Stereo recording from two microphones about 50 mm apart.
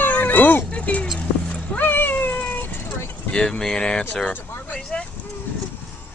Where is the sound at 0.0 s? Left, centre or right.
Left.